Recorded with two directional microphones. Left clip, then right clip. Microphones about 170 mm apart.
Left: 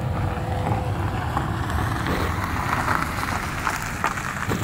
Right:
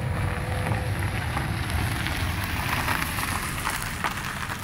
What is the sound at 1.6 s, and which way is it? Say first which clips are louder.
Vehicle: left 3 dB; 15° right (ahead or behind).